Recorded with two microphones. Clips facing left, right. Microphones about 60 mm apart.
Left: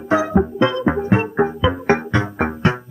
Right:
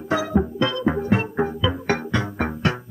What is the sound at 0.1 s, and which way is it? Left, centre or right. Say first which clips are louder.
Music: left 5 dB; left.